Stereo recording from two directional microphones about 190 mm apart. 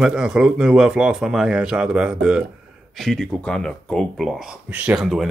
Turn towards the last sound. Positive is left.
turn(degrees=0)  # may be behind; listen again after turning